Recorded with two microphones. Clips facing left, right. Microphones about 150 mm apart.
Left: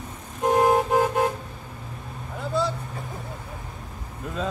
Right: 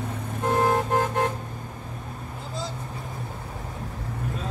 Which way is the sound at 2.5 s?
65° left (ahead or behind).